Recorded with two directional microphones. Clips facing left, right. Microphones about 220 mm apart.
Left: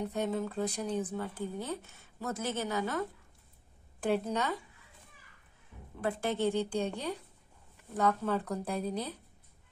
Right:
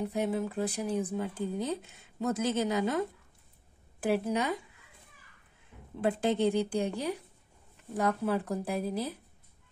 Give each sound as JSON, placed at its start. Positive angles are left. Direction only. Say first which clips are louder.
{"t": 0.1, "sound": "speech", "louder": "right 2 dB", "side_deg": -10}
{"t": 4.0, "sound": "speech", "louder": "right 2 dB", "side_deg": -5}
{"t": 5.9, "sound": "speech", "louder": "right 4 dB", "side_deg": -20}